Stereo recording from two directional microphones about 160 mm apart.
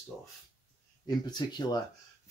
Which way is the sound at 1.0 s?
25° left (ahead or behind).